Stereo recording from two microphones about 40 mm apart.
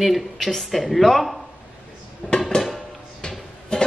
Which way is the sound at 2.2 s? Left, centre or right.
Left.